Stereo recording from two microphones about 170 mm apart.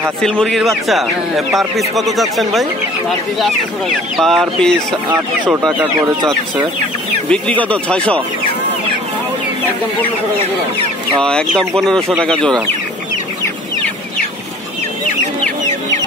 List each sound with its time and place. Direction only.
0.2 s speech: 5° left (ahead or behind)
4.2 s speech: centre (ahead or behind)
5.7 s speech: 10° right (ahead or behind)
7.2 s speech: 10° left (ahead or behind)
11.2 s speech: 5° left (ahead or behind)